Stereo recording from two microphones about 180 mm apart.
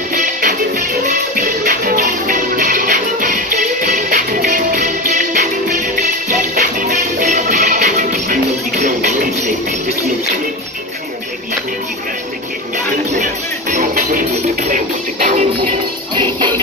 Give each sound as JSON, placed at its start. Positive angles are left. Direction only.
{"t": 0.1, "sound": "music", "side_deg": -45}
{"t": 13.1, "sound": "music", "side_deg": -45}
{"t": 16.2, "sound": "music", "side_deg": -25}